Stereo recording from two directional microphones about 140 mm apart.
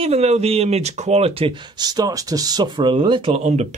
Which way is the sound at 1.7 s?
30° right (ahead or behind).